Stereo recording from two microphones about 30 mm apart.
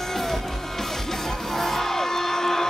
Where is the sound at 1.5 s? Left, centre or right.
Centre.